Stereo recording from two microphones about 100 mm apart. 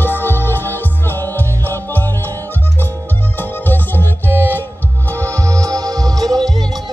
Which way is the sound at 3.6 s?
20° left (ahead or behind).